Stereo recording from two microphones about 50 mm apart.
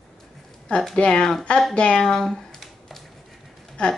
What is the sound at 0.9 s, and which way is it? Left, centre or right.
A woman's voice, centre.